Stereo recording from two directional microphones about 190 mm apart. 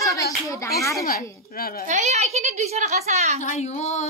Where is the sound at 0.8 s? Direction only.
15° left (ahead or behind).